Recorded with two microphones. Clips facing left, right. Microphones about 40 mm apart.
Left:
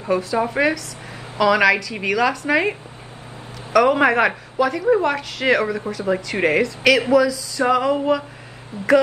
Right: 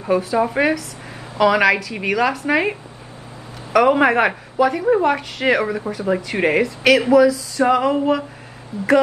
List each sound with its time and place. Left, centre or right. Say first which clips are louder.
0.0 s a woman's voice: right 2 dB; centre
0.6 s a sound: right 1 dB; centre
8.7 s speech: right 4 dB; left